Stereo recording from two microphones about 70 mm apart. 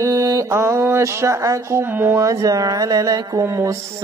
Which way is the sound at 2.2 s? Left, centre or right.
Right.